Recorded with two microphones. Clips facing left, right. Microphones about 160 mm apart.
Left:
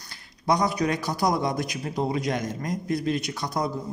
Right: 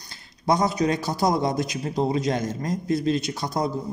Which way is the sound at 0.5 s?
25° right (ahead or behind).